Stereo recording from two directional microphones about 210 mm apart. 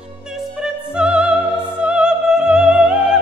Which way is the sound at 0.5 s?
5° right (ahead or behind).